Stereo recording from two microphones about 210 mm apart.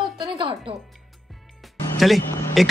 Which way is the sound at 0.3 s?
25° right (ahead or behind).